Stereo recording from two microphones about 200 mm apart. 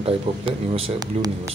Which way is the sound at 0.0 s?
30° right (ahead or behind).